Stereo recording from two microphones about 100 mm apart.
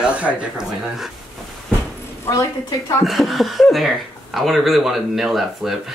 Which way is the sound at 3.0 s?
Centre (ahead or behind).